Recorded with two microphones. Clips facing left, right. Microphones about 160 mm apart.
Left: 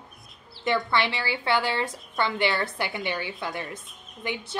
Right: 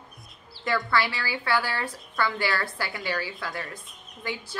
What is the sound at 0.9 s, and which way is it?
A woman's voice, 20° left (ahead or behind).